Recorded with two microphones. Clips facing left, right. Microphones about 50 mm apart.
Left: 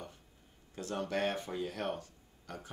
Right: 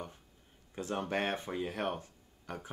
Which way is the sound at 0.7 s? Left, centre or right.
Right.